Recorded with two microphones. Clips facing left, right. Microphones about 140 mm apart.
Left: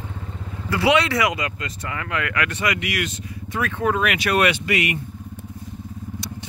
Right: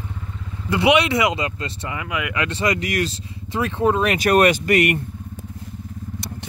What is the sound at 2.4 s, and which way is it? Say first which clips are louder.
Speech: right 4 dB; 30° right (ahead or behind).